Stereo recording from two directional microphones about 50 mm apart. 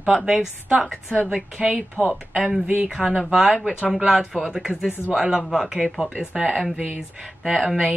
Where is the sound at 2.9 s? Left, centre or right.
Centre.